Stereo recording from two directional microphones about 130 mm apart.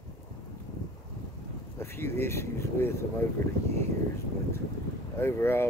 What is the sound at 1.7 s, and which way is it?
Speech, 20° left (ahead or behind).